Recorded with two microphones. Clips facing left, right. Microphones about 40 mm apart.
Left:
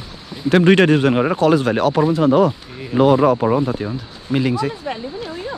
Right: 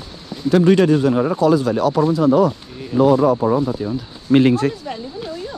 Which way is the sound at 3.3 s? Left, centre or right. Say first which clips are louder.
Even; left.